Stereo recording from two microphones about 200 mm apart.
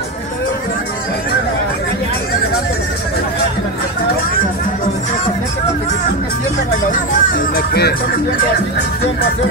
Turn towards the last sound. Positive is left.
turn(degrees=50)  # may be behind; listen again after turning